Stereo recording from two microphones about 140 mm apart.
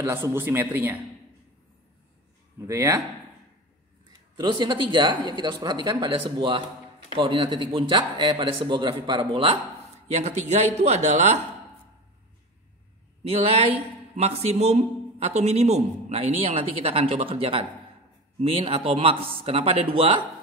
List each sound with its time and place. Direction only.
0.0 s a man's voice: 15° right (ahead or behind)
2.6 s speech: 20° right (ahead or behind)
4.4 s a man's voice: 30° right (ahead or behind)
10.1 s a man's voice: 50° right (ahead or behind)
13.3 s a man's voice: 45° right (ahead or behind)